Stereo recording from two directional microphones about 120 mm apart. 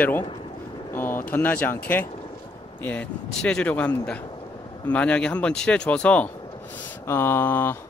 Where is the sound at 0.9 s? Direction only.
15° left (ahead or behind).